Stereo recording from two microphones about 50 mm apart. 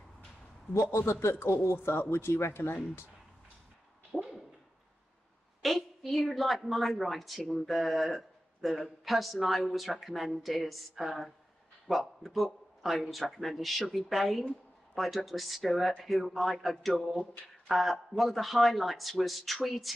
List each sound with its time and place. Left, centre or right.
1.4 s speech: left
4.1 s a sound: centre
5.6 s a woman's voice: centre